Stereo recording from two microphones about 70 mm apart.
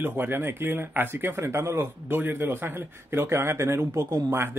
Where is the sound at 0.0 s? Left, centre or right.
Right.